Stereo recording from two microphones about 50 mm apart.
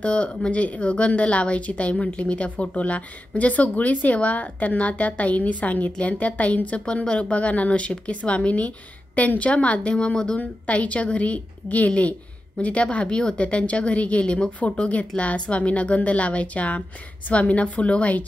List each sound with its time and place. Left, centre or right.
0.0 s speech: left